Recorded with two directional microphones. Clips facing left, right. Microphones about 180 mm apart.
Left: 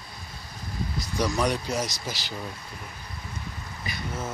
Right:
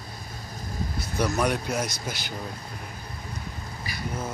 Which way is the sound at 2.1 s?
55° right (ahead or behind).